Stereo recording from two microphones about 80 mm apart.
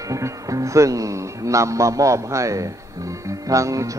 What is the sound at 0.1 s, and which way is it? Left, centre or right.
A man's voice, right.